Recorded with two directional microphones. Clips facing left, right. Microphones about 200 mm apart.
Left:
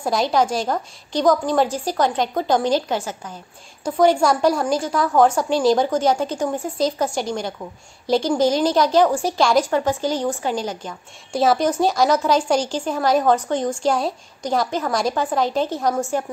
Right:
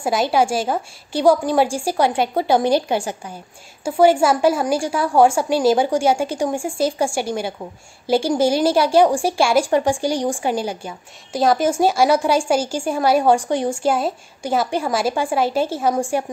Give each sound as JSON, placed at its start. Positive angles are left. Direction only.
{"t": 0.0, "sound": "a woman's voice", "side_deg": -5}